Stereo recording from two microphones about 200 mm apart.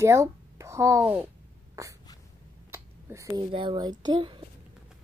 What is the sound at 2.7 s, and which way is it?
A child's voice, 15° right (ahead or behind).